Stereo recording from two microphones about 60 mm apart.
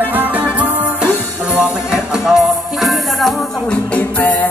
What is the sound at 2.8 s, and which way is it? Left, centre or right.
Music, centre.